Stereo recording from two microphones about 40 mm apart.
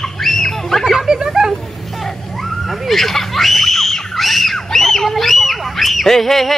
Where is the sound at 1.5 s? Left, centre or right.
Centre.